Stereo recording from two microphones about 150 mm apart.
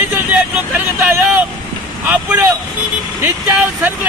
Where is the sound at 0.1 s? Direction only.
10° right (ahead or behind).